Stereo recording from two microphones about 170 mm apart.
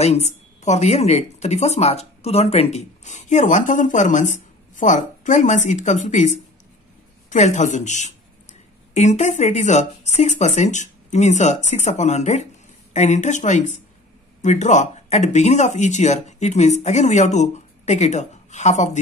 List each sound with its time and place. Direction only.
0.0 s a woman's voice: 40° left (ahead or behind)